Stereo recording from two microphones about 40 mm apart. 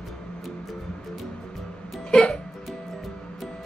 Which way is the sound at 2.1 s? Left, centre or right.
Left.